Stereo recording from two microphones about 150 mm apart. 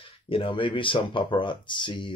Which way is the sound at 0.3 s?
35° left (ahead or behind).